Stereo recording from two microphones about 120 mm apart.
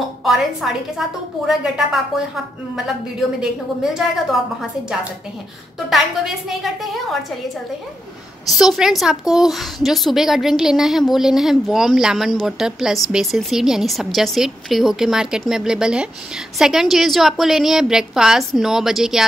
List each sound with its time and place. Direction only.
0.2 s a woman's voice: centre (ahead or behind)
3.3 s a woman's voice: 5° right (ahead or behind)
5.9 s a woman's voice: centre (ahead or behind)
8.5 s a woman's voice: 5° right (ahead or behind)